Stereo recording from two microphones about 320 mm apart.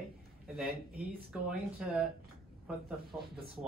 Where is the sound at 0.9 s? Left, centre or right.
Right.